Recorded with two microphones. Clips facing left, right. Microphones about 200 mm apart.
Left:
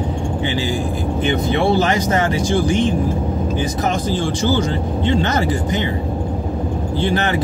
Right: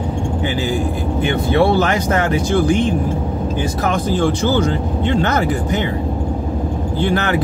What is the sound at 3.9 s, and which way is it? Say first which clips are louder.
Speech: right 3 dB; 60° right (ahead or behind).